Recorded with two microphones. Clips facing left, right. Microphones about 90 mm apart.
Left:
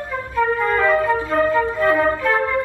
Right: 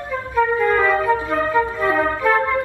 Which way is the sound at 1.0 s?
15° right (ahead or behind).